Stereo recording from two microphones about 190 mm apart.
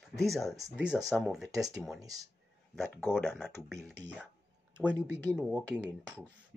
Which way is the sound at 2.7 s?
Centre (ahead or behind).